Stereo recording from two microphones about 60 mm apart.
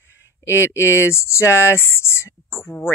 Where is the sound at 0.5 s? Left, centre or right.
Left.